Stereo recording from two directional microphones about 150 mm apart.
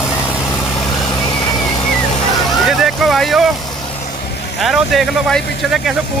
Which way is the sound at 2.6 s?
Centre (ahead or behind).